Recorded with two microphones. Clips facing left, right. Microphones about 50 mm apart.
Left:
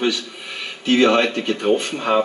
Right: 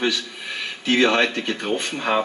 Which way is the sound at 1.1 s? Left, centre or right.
Centre.